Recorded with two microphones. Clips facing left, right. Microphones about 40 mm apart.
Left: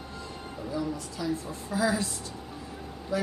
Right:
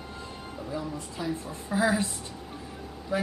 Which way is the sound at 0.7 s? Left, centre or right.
Right.